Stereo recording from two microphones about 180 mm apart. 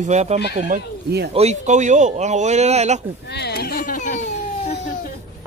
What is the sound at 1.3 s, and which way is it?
Speech, 35° right (ahead or behind).